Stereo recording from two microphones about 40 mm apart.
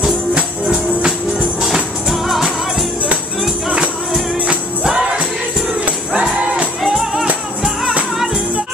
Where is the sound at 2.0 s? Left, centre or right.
Centre.